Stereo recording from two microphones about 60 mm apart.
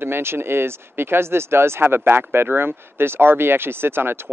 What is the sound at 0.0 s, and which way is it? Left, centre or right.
Speech, right.